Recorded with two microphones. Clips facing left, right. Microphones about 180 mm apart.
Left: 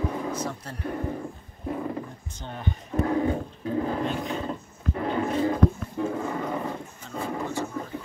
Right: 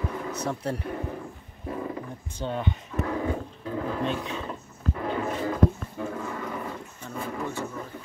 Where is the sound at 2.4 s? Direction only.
60° right (ahead or behind).